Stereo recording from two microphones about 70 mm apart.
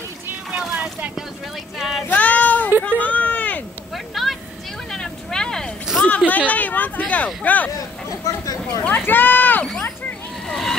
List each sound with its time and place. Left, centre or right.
1.8 s female singing: centre
2.0 s child singing: left
3.0 s a sound: left
3.9 s a sound: centre
4.9 s vehicle: centre
6.0 s speech: left
8.1 s speech: left
8.8 s speech: left
10.5 s speech: centre